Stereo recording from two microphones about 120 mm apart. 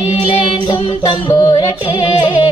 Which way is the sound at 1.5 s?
45° left (ahead or behind).